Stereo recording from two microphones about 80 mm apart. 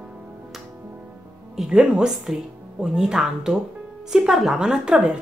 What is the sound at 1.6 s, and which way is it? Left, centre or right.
Speech, centre.